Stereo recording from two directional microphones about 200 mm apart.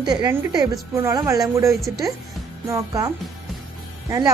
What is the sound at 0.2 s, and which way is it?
A woman's voice, 10° right (ahead or behind).